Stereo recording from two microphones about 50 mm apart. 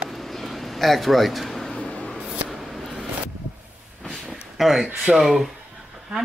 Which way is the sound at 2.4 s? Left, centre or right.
Centre.